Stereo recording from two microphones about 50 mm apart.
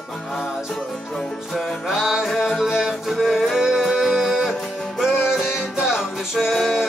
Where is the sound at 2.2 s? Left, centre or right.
Centre.